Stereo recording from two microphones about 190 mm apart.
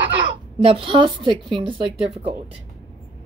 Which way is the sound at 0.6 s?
30° right (ahead or behind).